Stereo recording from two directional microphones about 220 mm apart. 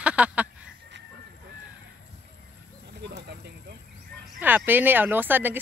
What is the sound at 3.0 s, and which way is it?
Bird, 50° right (ahead or behind).